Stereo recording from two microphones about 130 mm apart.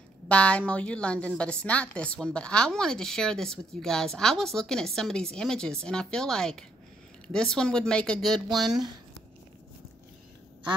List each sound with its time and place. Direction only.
0.3 s a woman's voice: 10° left (ahead or behind)